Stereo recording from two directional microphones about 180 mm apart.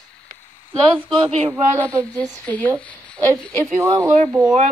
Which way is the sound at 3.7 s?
20° right (ahead or behind).